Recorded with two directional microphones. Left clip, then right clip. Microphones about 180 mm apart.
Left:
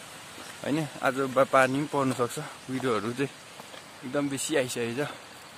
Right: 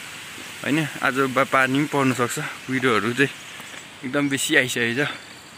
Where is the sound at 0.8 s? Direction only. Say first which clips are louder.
Right 6 dB; 5° right (ahead or behind).